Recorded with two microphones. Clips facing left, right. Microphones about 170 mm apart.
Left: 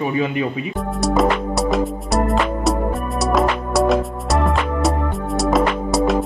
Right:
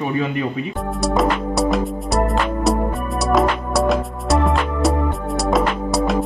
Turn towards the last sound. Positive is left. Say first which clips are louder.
# left 2 dB
turn(degrees=0)  # may be behind; listen again after turning